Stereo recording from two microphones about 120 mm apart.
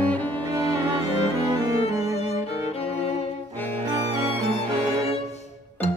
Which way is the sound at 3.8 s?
30° right (ahead or behind).